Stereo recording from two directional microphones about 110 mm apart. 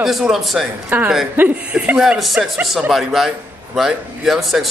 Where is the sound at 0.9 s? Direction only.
15° right (ahead or behind).